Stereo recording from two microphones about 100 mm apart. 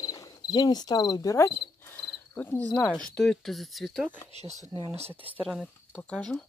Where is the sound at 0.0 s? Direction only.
40° left (ahead or behind); by 4.1 s centre (ahead or behind).